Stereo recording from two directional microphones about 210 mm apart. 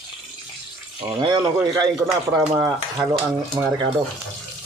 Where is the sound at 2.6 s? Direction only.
15° right (ahead or behind).